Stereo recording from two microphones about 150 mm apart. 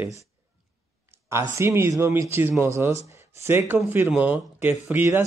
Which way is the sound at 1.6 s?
20° right (ahead or behind).